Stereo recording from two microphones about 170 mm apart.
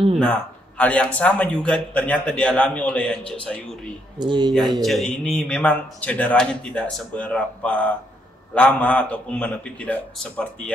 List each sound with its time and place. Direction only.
0.2 s a man's voice: 10° left (ahead or behind)
4.2 s speech: 25° right (ahead or behind)
4.5 s a man's voice: centre (ahead or behind)